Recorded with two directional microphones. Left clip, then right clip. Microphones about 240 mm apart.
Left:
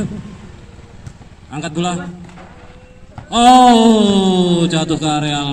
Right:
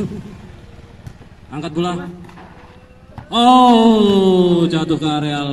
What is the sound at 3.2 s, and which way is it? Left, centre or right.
Speech, left.